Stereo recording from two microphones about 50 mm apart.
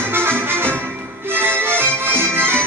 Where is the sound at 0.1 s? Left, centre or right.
Right.